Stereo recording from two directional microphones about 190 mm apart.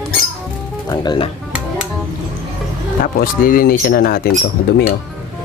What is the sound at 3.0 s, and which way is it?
Speech, 50° left (ahead or behind).